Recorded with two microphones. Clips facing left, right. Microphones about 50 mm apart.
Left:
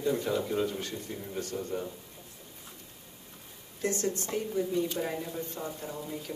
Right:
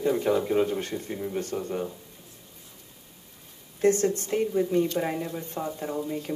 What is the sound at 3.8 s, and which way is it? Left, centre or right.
Speech, right.